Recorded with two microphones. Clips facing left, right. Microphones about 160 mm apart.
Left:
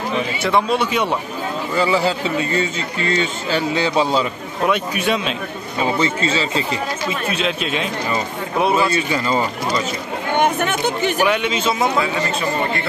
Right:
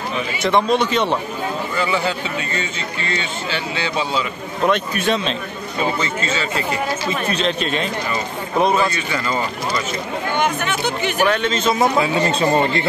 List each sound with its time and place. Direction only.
0.4 s a man's voice: 5° left (ahead or behind)
1.8 s a man's voice: 35° left (ahead or behind)
4.6 s a man's voice: 10° left (ahead or behind)
6.2 s speech: 30° left (ahead or behind)
7.1 s a man's voice: 5° left (ahead or behind)
8.9 s speech: 25° left (ahead or behind)
10.3 s speech: 50° left (ahead or behind)
11.1 s a man's voice: 10° left (ahead or behind)
12.0 s speech: 25° right (ahead or behind)